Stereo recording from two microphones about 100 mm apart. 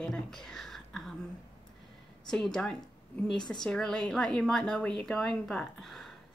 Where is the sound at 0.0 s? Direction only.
5° left (ahead or behind).